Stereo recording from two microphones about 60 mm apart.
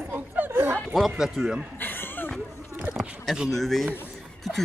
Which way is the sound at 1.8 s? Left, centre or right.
Left.